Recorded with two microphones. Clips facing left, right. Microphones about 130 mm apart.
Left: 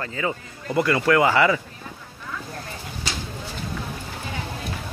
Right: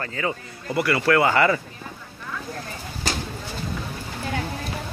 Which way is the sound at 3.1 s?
45° right (ahead or behind).